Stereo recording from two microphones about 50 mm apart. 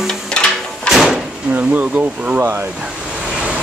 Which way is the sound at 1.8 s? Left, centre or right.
Right.